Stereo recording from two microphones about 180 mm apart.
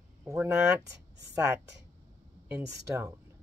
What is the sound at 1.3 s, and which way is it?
Speech, 15° right (ahead or behind).